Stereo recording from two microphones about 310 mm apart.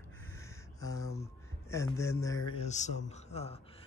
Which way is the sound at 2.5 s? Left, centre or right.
Left.